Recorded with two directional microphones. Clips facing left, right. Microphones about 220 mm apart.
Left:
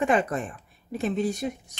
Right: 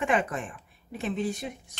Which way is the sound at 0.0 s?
40° left (ahead or behind).